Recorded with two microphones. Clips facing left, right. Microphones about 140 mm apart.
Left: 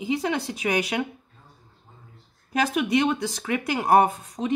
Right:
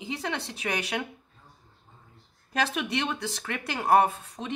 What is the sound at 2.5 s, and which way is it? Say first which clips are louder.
Speech: left 6 dB; 10° left (ahead or behind).